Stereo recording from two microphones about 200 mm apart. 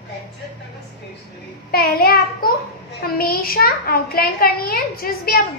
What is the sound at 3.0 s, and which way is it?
A child's voice, 50° left (ahead or behind).